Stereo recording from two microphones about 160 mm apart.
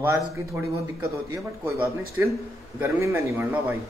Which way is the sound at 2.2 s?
15° right (ahead or behind).